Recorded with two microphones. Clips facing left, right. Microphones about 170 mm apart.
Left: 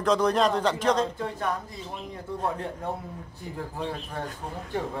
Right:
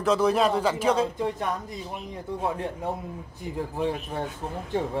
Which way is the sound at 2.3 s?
20° right (ahead or behind).